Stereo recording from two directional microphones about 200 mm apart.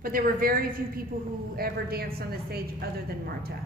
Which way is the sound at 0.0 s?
45° right (ahead or behind).